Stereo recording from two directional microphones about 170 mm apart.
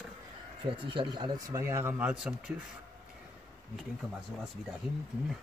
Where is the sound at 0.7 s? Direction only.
30° right (ahead or behind); by 2.5 s 5° right (ahead or behind).